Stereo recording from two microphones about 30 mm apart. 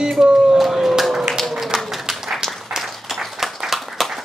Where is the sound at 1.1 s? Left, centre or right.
Centre.